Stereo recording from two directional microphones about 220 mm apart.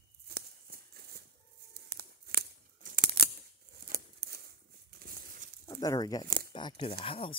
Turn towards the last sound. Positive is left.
turn(degrees=25)  # may be behind; listen again after turning